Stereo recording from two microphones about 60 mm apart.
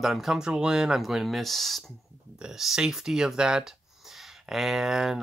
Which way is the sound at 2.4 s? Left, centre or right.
Centre.